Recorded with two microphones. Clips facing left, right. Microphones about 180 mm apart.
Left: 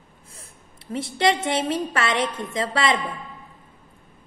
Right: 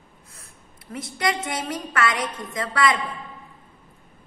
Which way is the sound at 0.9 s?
30° left (ahead or behind).